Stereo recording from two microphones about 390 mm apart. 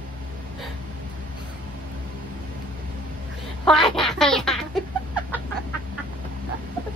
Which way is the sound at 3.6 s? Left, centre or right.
Centre.